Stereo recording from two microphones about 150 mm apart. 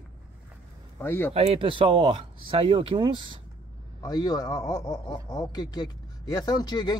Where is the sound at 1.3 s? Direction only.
40° right (ahead or behind).